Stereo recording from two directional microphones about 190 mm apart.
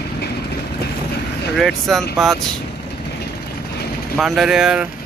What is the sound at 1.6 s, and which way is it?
Speech, centre (ahead or behind).